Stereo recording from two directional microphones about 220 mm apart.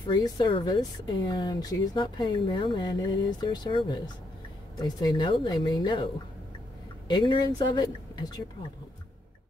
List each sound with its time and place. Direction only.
0.1 s speech: 20° left (ahead or behind)
7.1 s speech: 20° left (ahead or behind)